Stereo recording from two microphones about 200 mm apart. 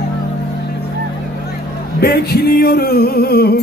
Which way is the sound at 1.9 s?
50° left (ahead or behind).